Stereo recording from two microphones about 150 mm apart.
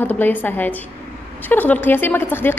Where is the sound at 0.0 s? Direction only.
10° left (ahead or behind).